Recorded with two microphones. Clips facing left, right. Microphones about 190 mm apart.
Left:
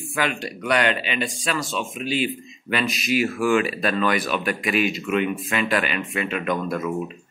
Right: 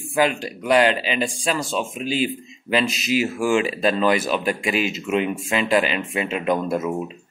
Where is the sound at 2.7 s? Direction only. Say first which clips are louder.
Right 2 dB; 25° right (ahead or behind).